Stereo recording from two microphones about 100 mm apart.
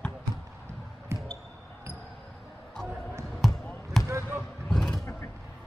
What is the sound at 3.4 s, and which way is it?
Basketball bounce, 5° left (ahead or behind).